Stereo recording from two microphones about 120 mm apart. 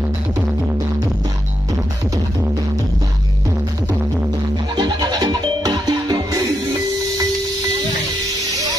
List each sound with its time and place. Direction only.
4.7 s music: 35° right (ahead or behind)